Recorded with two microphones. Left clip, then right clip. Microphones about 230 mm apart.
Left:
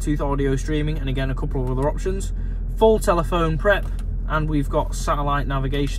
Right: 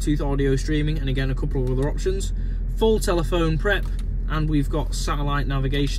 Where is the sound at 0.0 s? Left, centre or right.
Centre.